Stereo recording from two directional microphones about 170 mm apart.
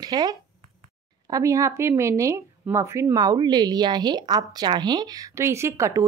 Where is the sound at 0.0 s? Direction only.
25° right (ahead or behind).